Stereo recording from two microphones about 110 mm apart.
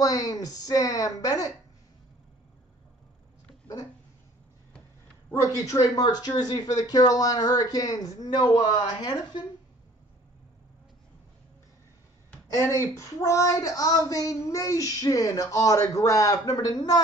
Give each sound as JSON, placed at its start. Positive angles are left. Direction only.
{"t": 0.0, "sound": "speech", "side_deg": 35}
{"t": 5.4, "sound": "speech", "side_deg": 30}
{"t": 12.5, "sound": "speech", "side_deg": 25}